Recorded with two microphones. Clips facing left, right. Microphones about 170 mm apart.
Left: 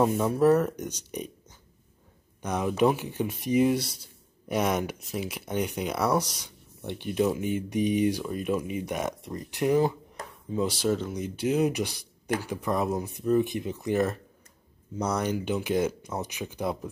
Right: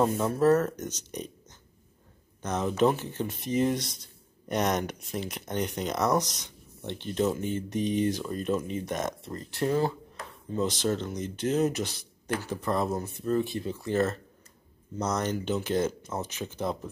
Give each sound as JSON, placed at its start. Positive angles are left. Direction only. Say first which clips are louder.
{"t": 0.0, "sound": "speech", "louder": "left 2 dB", "side_deg": 10}
{"t": 2.4, "sound": "speech", "louder": "left 1 dB", "side_deg": 10}
{"t": 10.2, "sound": "a sound", "louder": "left 3 dB", "side_deg": 40}
{"t": 10.5, "sound": "speech", "louder": "left 1 dB", "side_deg": 10}